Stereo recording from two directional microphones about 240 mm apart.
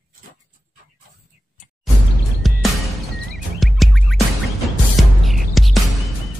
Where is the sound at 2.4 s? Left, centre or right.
Centre.